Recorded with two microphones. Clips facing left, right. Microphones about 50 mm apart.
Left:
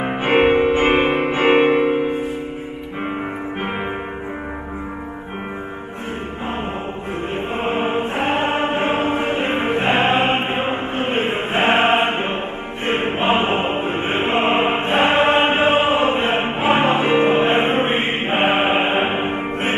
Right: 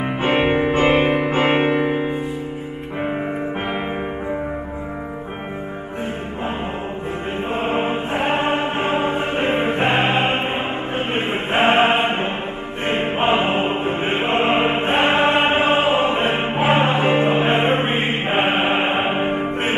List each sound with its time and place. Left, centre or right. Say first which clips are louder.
0.0 s music: left 3 dB; left
8.4 s music: left 1 dB; left
11.6 s chant: even; left
12.8 s music: even; left
15.0 s choir: left 2 dB; left
16.7 s music: left 2 dB; left
17.7 s choir: left 1 dB; left
18.3 s music: left 2 dB; left